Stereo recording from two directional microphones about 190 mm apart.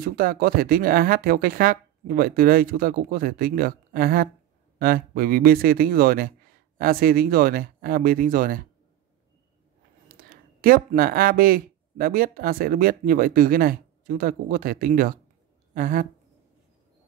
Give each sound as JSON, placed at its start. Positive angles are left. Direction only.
{"t": 0.0, "sound": "speech", "side_deg": -50}
{"t": 10.0, "sound": "speech", "side_deg": -50}